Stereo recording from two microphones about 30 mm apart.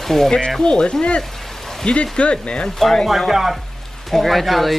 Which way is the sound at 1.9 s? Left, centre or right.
Left.